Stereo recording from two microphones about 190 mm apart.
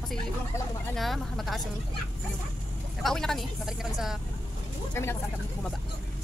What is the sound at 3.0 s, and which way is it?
A woman's voice, centre (ahead or behind).